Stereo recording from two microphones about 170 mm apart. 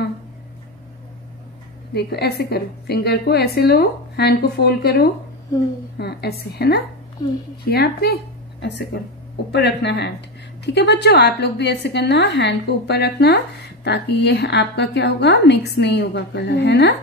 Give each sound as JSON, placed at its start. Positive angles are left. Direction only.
{"t": 2.0, "sound": "a woman's voice", "side_deg": 70}